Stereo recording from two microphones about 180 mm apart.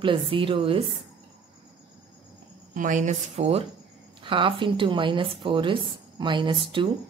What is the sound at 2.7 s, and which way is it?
A woman's voice, 45° right (ahead or behind).